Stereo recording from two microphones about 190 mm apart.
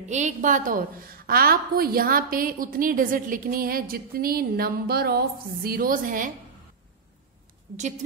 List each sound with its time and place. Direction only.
0.1 s a woman's voice: 40° right (ahead or behind)